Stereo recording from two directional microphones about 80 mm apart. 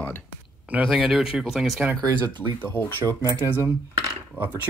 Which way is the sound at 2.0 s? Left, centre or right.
Right.